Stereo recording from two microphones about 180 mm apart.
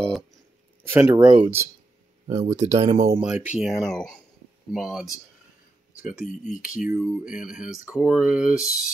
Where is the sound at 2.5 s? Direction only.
15° right (ahead or behind).